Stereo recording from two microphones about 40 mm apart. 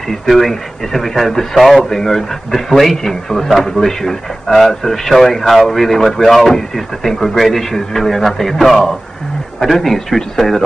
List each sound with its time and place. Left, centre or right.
0.1 s a man's voice: centre